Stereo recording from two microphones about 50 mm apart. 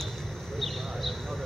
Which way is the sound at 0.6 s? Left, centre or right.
Centre.